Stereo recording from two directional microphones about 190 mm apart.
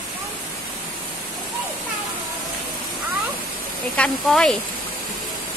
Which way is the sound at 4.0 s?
5° left (ahead or behind).